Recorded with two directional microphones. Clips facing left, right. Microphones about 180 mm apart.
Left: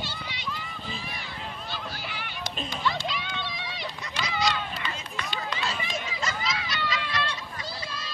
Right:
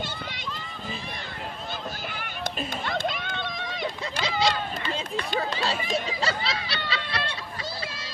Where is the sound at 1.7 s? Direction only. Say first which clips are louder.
Right 2 dB; 50° right (ahead or behind).